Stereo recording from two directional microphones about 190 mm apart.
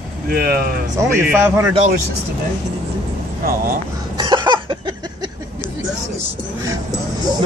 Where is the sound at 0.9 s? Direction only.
15° right (ahead or behind).